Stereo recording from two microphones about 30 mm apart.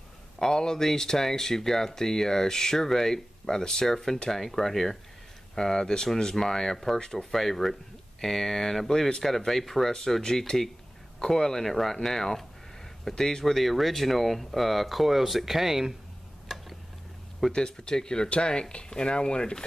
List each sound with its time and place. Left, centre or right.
0.4 s speech: left
13.6 s speech: centre
16.5 s tick-tock: centre
17.6 s speech: left